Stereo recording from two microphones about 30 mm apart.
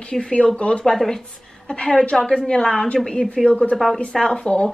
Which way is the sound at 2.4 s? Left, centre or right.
Left.